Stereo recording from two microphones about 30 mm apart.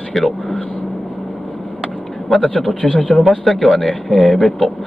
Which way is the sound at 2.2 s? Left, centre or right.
Centre.